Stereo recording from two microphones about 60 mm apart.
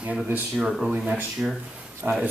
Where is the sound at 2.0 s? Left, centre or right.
Right.